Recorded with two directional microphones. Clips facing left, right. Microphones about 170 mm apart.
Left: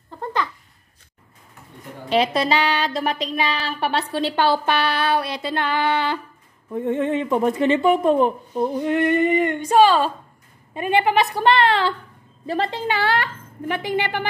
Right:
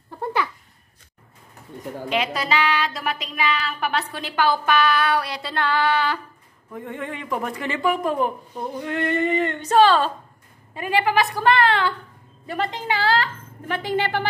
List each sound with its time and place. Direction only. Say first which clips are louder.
0.2 s babbling: right 1 dB; 10° right (ahead or behind)
2.0 s a man's voice: left 5 dB; 35° left (ahead or behind); by 10.1 s 10° left (ahead or behind)
10.7 s a man's voice: left 3 dB; 20° left (ahead or behind)
12.9 s speech: right 3 dB; 30° right (ahead or behind)
13.7 s a woman's voice: even; 15° left (ahead or behind)